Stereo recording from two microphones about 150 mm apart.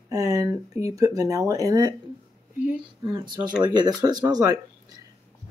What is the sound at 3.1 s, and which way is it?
Speech, 30° right (ahead or behind).